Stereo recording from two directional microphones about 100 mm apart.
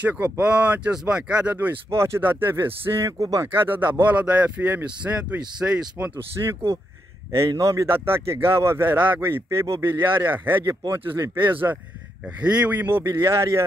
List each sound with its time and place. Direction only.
0.0 s speech: 15° right (ahead or behind); by 3.4 s 35° right (ahead or behind)
3.5 s speech: 20° right (ahead or behind)
6.4 s speech: 35° right (ahead or behind)